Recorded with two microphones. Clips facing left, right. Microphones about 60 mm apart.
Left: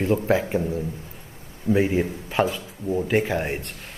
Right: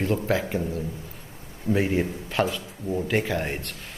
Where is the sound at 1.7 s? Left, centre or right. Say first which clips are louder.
Left 3 dB; centre.